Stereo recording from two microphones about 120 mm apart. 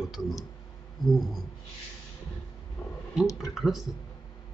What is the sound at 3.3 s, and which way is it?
Speech, 30° left (ahead or behind).